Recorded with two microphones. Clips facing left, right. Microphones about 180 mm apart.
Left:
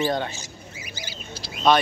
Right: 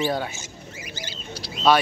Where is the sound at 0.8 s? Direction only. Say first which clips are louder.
Right 2 dB; 10° left (ahead or behind).